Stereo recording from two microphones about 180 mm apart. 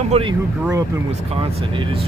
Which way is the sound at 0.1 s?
25° right (ahead or behind).